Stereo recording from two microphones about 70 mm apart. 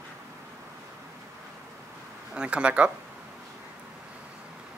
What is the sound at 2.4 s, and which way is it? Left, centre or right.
Speech, centre.